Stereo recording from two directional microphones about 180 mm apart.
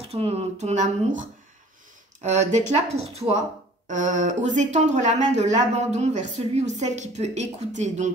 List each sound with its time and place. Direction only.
0.1 s speech: 35° right (ahead or behind)